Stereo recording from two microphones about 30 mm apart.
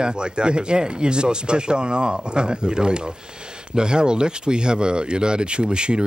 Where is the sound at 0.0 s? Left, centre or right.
Right.